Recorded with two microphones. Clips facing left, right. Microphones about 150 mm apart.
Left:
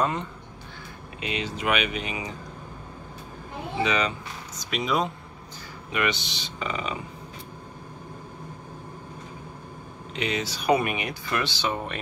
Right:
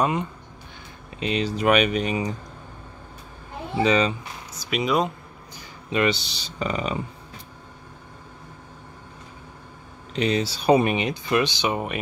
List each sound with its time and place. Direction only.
0.0 s speech: 15° right (ahead or behind)
1.2 s speech: 35° right (ahead or behind)
3.8 s speech: 30° right (ahead or behind)
4.6 s speech: 5° right (ahead or behind)
5.9 s speech: 30° right (ahead or behind)
10.1 s speech: 35° right (ahead or behind); by 12.0 s 15° right (ahead or behind)